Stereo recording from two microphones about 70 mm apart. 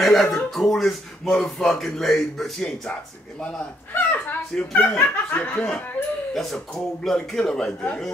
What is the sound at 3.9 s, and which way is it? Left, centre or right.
Chuckle, left.